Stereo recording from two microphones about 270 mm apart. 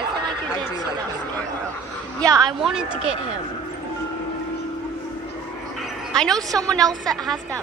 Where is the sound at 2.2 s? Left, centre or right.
Centre.